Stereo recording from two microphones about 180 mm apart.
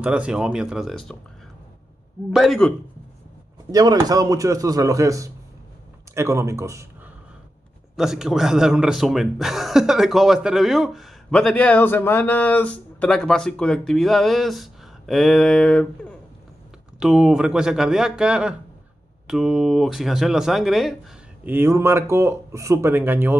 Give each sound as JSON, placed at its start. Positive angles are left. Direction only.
{"t": 0.0, "sound": "speech", "side_deg": -5}
{"t": 2.3, "sound": "speech", "side_deg": 0}
{"t": 3.7, "sound": "speech", "side_deg": -20}
{"t": 7.9, "sound": "speech", "side_deg": 0}
{"t": 21.5, "sound": "speech", "side_deg": -15}